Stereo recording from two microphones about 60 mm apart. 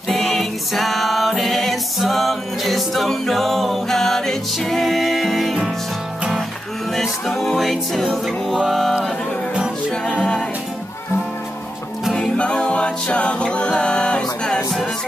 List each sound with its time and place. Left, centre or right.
0.1 s music: centre
6.9 s music: centre
8.5 s mantra: centre
12.2 s a capella: centre